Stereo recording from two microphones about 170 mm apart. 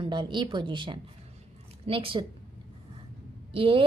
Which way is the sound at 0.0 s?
30° right (ahead or behind).